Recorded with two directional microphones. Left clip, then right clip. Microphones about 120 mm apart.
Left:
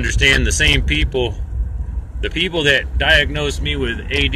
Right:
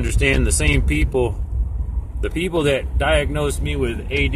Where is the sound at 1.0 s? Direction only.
20° right (ahead or behind).